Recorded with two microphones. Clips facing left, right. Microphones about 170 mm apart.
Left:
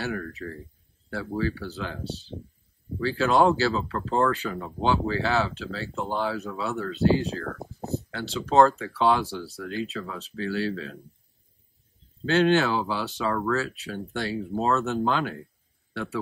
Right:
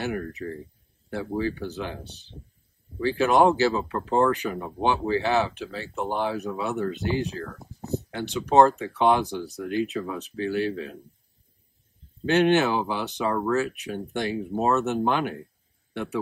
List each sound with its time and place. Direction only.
0.0 s speech: 20° right (ahead or behind)
12.3 s a man's voice: 20° right (ahead or behind)